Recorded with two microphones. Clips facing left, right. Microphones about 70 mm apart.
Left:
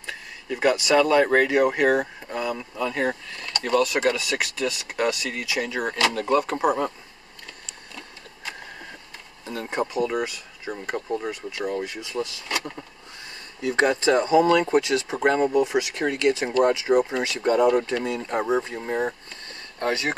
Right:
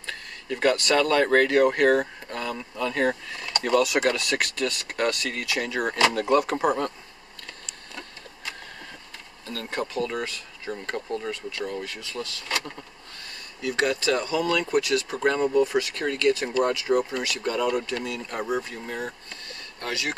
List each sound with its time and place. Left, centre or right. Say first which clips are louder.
0.0 s speech: left 1 dB; centre
9.5 s speech: left 3 dB; centre
13.6 s speech: left 4 dB; left